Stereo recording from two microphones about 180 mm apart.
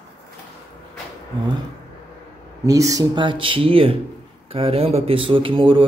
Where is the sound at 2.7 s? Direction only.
20° right (ahead or behind).